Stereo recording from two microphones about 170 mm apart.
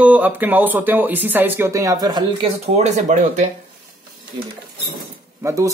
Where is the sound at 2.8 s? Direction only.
40° right (ahead or behind).